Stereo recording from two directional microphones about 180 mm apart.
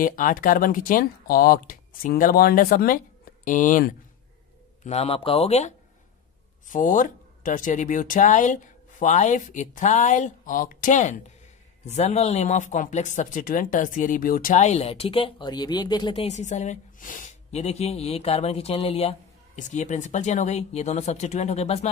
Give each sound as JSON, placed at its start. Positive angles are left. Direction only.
{"t": 0.0, "sound": "speech", "side_deg": 50}
{"t": 4.8, "sound": "speech", "side_deg": 35}